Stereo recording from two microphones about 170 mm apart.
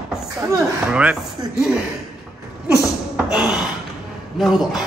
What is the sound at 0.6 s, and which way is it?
Speech, 5° right (ahead or behind).